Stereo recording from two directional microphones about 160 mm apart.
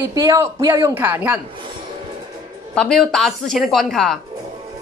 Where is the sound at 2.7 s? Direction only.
5° left (ahead or behind).